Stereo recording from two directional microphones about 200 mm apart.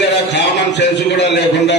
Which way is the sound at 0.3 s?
60° left (ahead or behind).